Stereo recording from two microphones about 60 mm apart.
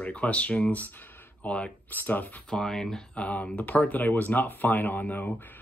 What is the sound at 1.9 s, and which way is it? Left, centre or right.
Speech, left.